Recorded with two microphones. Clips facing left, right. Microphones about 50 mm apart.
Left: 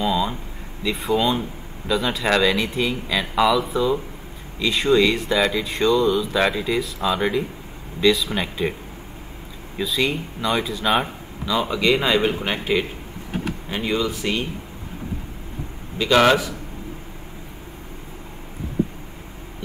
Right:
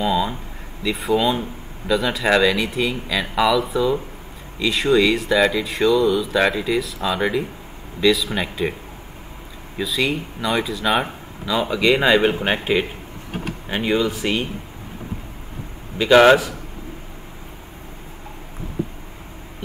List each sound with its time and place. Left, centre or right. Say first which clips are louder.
0.0 s speech: right 1 dB; centre
9.8 s speech: right 1 dB; centre
12.2 s speech: right 3 dB; right
16.0 s speech: right 4 dB; centre